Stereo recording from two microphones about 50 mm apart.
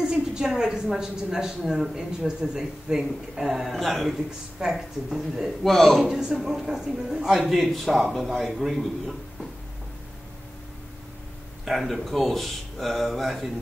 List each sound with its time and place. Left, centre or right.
0.0 s a sound: centre
0.5 s a man's voice: centre
5.6 s a man's voice: centre
11.6 s a man's voice: centre